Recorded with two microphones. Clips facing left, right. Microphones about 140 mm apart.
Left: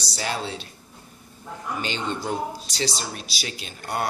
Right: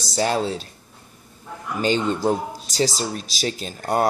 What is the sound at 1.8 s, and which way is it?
A man's voice, 40° right (ahead or behind).